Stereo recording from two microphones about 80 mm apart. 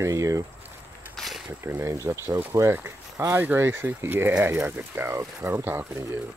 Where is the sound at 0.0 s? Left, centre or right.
Right.